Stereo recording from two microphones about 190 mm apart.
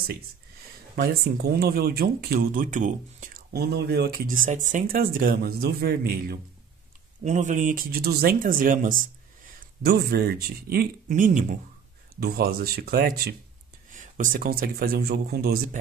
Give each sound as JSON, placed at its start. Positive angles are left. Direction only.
{"t": 0.9, "sound": "speech", "side_deg": -55}
{"t": 7.2, "sound": "speech", "side_deg": -40}
{"t": 12.2, "sound": "speech", "side_deg": -55}